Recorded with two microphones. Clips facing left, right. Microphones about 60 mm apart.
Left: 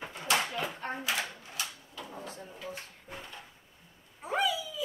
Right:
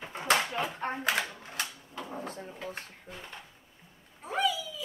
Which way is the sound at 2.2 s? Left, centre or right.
Right.